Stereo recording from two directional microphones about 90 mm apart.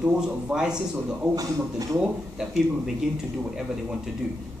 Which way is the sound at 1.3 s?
40° right (ahead or behind).